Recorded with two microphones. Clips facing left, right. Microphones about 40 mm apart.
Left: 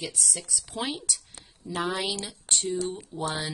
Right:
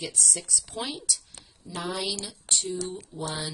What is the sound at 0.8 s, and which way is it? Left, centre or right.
Speech, centre.